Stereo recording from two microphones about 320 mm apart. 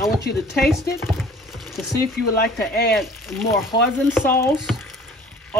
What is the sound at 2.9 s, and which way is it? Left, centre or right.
Speech, centre.